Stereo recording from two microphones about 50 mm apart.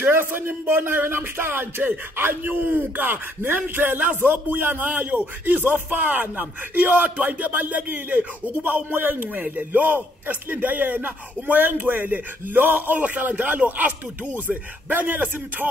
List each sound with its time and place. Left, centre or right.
0.0 s a man's voice: right